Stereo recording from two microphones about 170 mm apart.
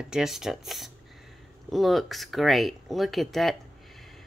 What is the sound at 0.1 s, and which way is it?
Speech, centre (ahead or behind).